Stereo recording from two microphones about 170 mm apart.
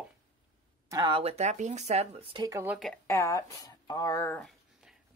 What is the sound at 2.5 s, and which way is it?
Speech, 15° right (ahead or behind).